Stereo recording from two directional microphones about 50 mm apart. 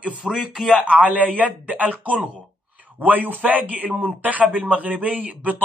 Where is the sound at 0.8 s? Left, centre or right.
Right.